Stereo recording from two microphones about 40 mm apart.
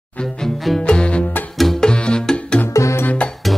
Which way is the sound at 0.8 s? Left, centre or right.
Left.